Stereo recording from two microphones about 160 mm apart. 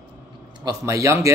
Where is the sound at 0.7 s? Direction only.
20° right (ahead or behind).